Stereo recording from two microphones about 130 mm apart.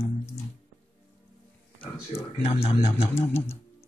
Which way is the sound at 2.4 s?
55° left (ahead or behind).